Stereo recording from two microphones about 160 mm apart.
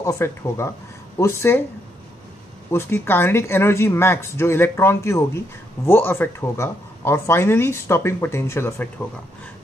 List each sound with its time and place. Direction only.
0.0 s speech: 20° left (ahead or behind)
2.7 s speech: 15° left (ahead or behind)